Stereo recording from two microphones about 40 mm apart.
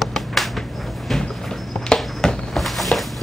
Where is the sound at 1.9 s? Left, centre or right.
Centre.